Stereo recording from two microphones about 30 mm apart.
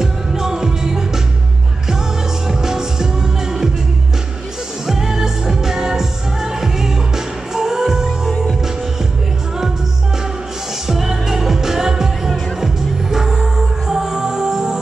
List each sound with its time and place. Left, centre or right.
0.0 s music: centre
2.4 s music: centre
4.8 s music: centre
10.9 s music: centre